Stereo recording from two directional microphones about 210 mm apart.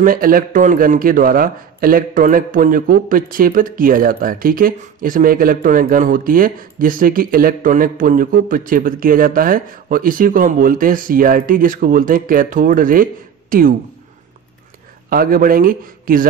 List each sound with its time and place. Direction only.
0.0 s a man's voice: 40° right (ahead or behind)
15.0 s a man's voice: 45° right (ahead or behind)